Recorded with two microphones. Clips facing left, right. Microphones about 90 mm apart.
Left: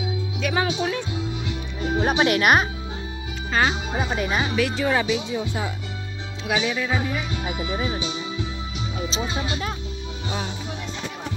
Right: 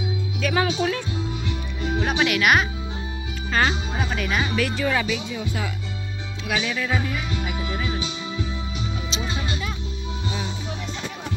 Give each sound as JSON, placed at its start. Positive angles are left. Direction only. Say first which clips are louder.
{"t": 0.4, "sound": "speech", "louder": "right 1 dB", "side_deg": 20}
{"t": 1.8, "sound": "music", "louder": "left 2 dB", "side_deg": 25}
{"t": 2.0, "sound": "speech", "louder": "left 2 dB", "side_deg": 35}
{"t": 3.5, "sound": "speech", "louder": "left 1 dB", "side_deg": 15}